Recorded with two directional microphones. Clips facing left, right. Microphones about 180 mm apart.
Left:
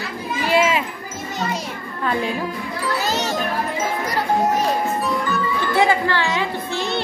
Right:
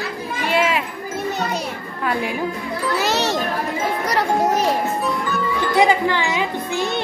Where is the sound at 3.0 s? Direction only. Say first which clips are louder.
Right 4 dB; 75° right (ahead or behind).